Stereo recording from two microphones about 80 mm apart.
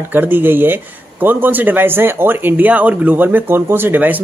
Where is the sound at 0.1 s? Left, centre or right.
Right.